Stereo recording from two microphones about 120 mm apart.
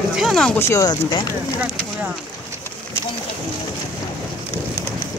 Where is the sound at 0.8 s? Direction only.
35° left (ahead or behind).